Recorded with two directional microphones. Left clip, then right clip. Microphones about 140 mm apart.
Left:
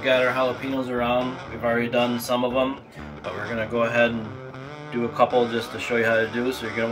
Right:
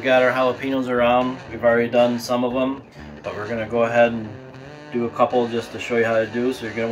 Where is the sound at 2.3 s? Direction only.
20° left (ahead or behind).